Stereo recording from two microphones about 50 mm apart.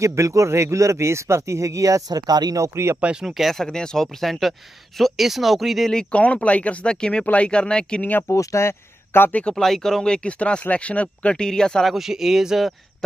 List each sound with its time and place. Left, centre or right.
0.0 s speech: right
3.2 s speech: centre
3.5 s speech: centre
6.1 s speech: left
8.3 s speech: left
9.3 s speech: left
9.6 s speech: centre; by 11.4 s left
11.4 s speech: centre
11.8 s speech: centre